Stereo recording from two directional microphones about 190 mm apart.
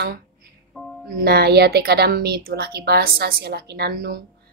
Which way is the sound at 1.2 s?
55° right (ahead or behind).